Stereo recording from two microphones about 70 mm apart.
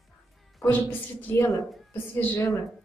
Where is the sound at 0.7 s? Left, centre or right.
Left.